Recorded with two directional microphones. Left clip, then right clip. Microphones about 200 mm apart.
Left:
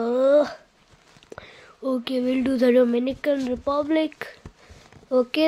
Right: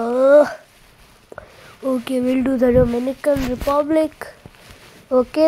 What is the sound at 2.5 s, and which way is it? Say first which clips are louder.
Speech: right 2 dB; 20° left (ahead or behind).